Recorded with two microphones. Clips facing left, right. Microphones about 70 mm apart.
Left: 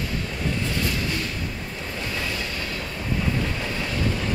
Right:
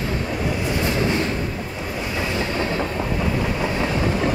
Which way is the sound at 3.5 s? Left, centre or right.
Right.